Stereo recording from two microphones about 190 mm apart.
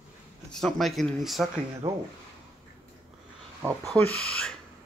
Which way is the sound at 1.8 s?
20° right (ahead or behind).